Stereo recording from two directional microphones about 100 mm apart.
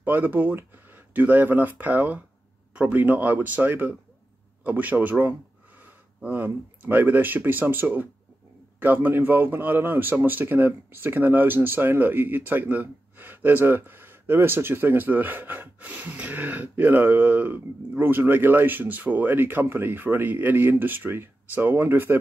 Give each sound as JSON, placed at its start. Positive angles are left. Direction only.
{"t": 0.0, "sound": "speech", "side_deg": -20}